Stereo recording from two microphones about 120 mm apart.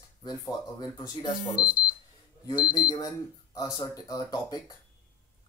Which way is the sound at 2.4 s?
35° left (ahead or behind).